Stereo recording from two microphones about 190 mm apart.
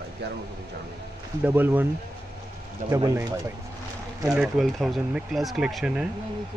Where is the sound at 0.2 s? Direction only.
60° right (ahead or behind).